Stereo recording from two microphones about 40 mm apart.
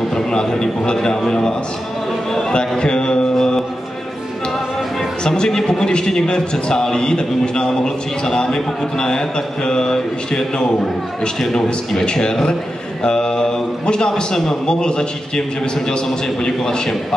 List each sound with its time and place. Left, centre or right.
0.1 s a man's voice: centre
3.3 s music: centre
5.2 s a man's voice: centre